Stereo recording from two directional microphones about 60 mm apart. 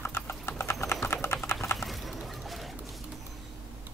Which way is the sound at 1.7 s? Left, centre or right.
Centre.